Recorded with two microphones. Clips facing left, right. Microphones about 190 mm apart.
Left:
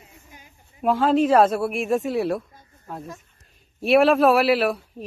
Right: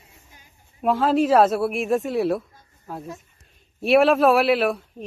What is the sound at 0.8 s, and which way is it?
A man's voice, centre (ahead or behind).